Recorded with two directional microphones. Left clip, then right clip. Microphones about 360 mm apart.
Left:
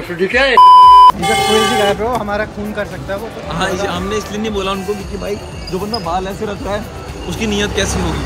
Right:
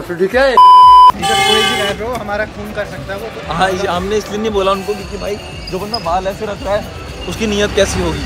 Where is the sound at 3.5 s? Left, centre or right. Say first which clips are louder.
Right 4 dB; centre.